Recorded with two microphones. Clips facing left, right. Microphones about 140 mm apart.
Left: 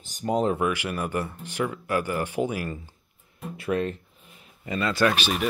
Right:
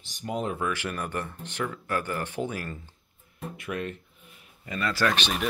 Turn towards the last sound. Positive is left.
turn(degrees=5)  # may be behind; listen again after turning